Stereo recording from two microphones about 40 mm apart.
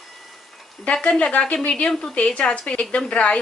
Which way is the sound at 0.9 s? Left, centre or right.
Left.